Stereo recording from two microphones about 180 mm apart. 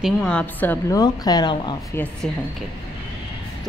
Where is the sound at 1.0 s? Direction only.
20° left (ahead or behind).